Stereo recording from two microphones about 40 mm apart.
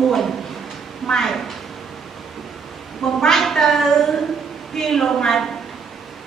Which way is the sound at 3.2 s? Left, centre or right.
Centre.